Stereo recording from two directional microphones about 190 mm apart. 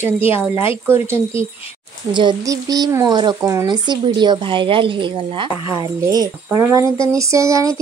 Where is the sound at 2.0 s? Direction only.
25° right (ahead or behind).